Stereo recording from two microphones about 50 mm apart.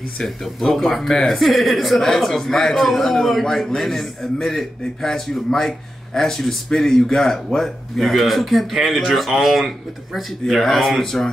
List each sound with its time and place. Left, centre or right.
0.2 s speech: centre